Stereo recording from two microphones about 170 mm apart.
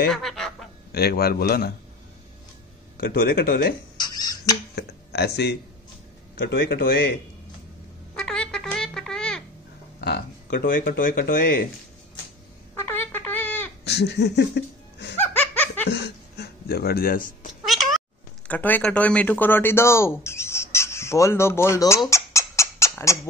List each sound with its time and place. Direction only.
0.1 s fowl: centre (ahead or behind)
0.9 s speech: 65° left (ahead or behind)
3.0 s speech: 70° left (ahead or behind)
4.0 s a sound: 25° left (ahead or behind)
4.7 s speech: 70° left (ahead or behind)
8.2 s a sound: 5° left (ahead or behind)
9.9 s speech: 70° left (ahead or behind); by 11.7 s 55° left (ahead or behind)
12.7 s a sound: 10° left (ahead or behind)
13.8 s laughter: 75° left (ahead or behind)
15.1 s laughter: 10° left (ahead or behind)
15.9 s a sound: 75° left (ahead or behind); by 17.5 s 55° left (ahead or behind)
17.6 s cat: centre (ahead or behind)
18.5 s speech: 10° left (ahead or behind)